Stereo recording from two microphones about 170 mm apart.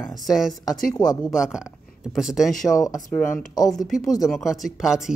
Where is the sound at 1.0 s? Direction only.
25° left (ahead or behind).